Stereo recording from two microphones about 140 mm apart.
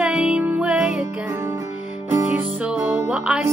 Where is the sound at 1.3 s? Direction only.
15° right (ahead or behind).